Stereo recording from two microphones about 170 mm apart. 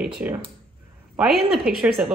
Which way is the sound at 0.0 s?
5° right (ahead or behind).